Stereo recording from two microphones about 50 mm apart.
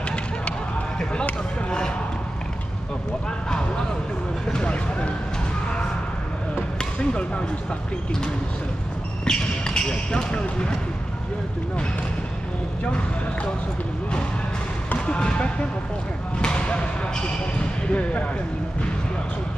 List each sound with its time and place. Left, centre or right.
0.1 s a sound: left
3.4 s speech: centre
6.8 s speech: left
9.2 s speech: centre
12.8 s speech: left
15.0 s speech: centre